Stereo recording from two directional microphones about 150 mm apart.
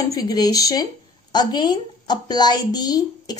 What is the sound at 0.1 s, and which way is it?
A woman's voice, 25° left (ahead or behind).